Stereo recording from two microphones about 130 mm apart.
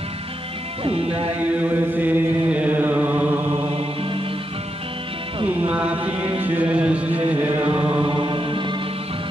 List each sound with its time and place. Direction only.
0.8 s music: 45° right (ahead or behind)
1.6 s chant: 15° right (ahead or behind)
3.6 s mantra: 45° right (ahead or behind)
5.5 s music: 10° right (ahead or behind)
7.2 s chant: 15° right (ahead or behind)
8.0 s music: 40° right (ahead or behind)